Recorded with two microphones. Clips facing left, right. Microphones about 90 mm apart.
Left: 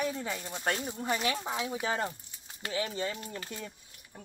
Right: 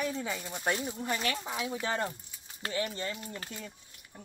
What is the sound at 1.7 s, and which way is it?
Speech, 5° left (ahead or behind).